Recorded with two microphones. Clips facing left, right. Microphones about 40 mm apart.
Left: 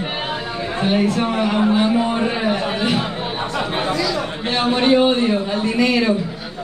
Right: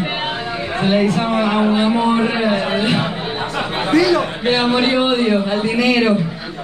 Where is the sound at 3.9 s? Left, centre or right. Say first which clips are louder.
Right 7 dB; right.